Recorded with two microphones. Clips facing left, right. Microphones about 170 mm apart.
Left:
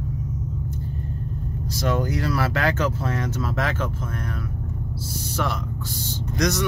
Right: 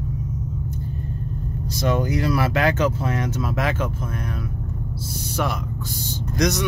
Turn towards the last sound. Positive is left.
turn(degrees=-15)  # may be behind; listen again after turning